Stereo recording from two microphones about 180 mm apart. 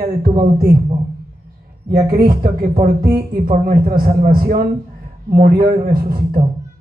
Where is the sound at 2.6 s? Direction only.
55° right (ahead or behind).